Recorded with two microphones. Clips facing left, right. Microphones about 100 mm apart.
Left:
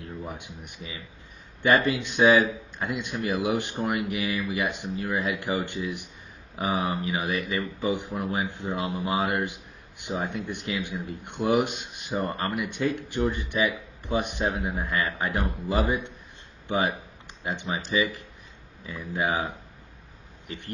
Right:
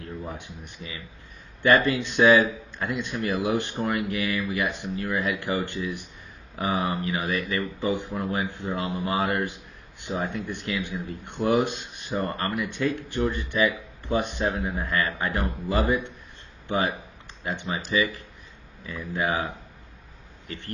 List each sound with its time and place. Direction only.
0.3 s speech: 15° left (ahead or behind)